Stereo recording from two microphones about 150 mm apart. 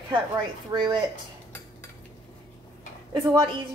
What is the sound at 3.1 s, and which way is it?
Speech, 30° right (ahead or behind).